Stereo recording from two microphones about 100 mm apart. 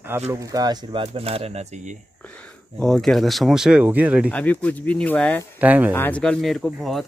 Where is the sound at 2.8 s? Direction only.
5° left (ahead or behind); by 4.3 s 15° right (ahead or behind).